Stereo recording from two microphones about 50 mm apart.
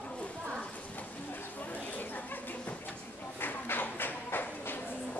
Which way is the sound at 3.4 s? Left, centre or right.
Left.